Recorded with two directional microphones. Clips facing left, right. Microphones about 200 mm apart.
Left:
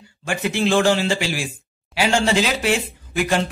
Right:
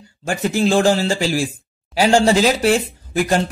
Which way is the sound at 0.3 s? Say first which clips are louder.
Right 3 dB; 40° right (ahead or behind).